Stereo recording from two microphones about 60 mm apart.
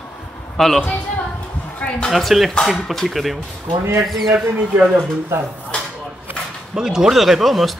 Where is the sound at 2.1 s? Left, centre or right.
Centre.